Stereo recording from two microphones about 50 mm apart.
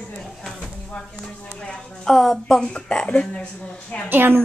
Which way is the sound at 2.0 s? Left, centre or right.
Centre.